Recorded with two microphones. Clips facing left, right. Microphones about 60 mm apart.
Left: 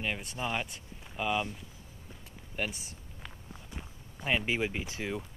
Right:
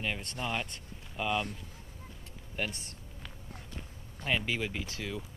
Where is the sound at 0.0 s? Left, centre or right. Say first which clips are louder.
Left 1 dB; centre.